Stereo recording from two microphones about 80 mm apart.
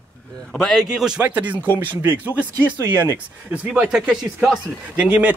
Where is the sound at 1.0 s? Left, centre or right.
Centre.